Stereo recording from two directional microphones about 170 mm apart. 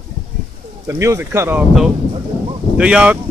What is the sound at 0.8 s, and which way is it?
Speech, 15° right (ahead or behind).